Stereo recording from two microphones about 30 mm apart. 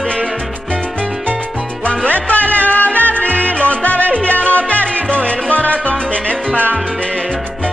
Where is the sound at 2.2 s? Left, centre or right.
Left.